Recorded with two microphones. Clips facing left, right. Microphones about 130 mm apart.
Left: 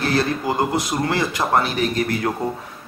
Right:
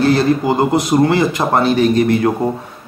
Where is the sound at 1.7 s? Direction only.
25° right (ahead or behind).